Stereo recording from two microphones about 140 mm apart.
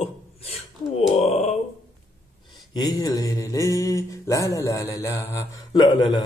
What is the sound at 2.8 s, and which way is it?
Mantra, 25° left (ahead or behind).